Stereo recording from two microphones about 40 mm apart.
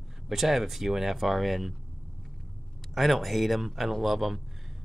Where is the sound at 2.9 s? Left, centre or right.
Centre.